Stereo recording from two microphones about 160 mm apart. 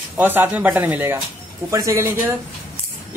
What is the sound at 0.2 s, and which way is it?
Speech, 10° right (ahead or behind).